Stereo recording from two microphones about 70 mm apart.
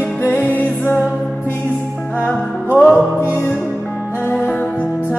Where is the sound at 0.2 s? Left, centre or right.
Left.